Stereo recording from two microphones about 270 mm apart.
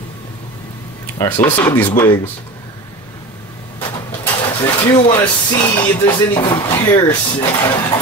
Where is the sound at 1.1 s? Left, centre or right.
Centre.